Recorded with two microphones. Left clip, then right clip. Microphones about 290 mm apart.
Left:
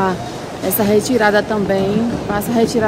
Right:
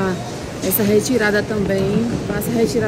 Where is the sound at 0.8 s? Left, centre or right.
Centre.